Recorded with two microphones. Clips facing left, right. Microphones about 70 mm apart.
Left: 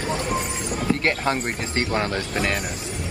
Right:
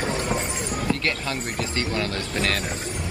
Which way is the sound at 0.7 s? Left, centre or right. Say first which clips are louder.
Left 4 dB; left.